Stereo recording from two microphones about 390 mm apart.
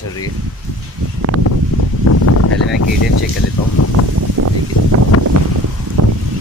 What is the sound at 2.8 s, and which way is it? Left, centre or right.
Speech, left.